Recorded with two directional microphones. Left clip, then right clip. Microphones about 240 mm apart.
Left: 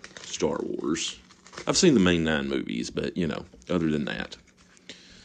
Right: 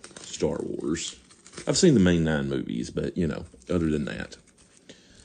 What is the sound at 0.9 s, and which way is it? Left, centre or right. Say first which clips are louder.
Speech: left 2 dB; centre.